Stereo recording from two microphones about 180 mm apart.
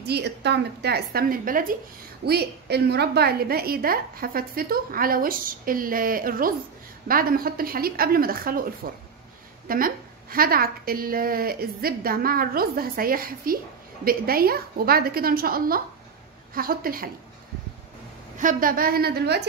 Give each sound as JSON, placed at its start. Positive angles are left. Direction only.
{"t": 0.0, "sound": "a woman's voice", "side_deg": -65}
{"t": 2.2, "sound": "a woman's voice", "side_deg": -65}
{"t": 18.4, "sound": "a woman's voice", "side_deg": -50}